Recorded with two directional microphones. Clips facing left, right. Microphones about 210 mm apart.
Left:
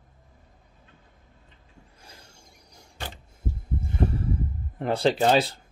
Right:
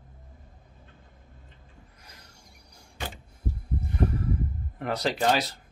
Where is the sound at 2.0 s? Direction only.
25° left (ahead or behind).